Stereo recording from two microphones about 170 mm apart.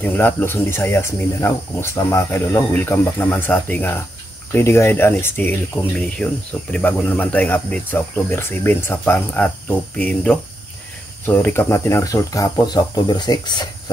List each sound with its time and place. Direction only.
0.0 s speech: 10° left (ahead or behind)